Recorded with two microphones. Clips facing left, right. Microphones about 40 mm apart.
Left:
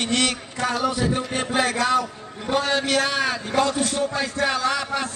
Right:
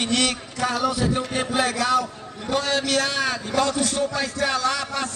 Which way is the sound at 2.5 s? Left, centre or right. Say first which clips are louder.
Left 1 dB; centre.